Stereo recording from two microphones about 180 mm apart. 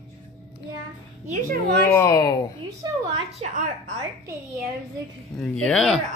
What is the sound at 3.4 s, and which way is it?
Speech, 45° right (ahead or behind).